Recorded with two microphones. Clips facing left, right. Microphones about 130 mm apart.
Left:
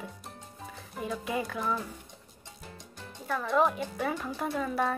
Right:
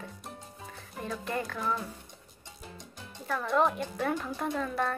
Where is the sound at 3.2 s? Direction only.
Centre (ahead or behind).